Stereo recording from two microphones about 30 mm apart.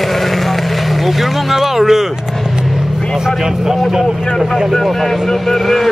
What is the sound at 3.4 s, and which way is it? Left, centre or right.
Speech, centre.